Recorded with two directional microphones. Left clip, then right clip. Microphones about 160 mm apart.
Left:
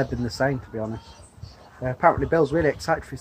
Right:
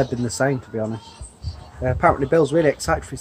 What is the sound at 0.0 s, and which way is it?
Speech, 10° right (ahead or behind).